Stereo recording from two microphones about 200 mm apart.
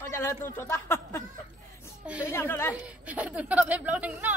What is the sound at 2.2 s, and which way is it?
Speech, 10° left (ahead or behind).